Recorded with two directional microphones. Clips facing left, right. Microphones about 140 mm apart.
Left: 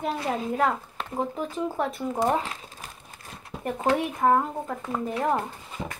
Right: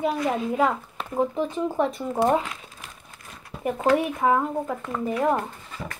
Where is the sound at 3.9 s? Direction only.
5° right (ahead or behind).